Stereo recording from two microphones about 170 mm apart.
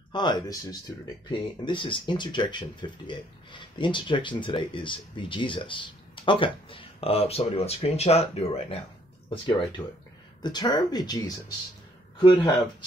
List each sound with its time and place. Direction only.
0.1 s speech: 25° left (ahead or behind)